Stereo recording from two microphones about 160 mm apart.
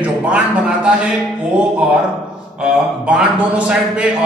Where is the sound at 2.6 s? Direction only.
5° right (ahead or behind).